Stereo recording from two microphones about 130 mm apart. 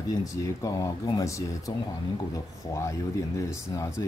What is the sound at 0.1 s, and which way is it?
Speech, 25° left (ahead or behind).